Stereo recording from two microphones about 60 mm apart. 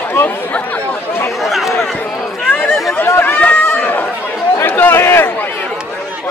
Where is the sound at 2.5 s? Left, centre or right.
Left.